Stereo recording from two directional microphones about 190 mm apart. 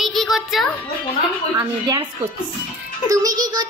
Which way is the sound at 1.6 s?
20° right (ahead or behind).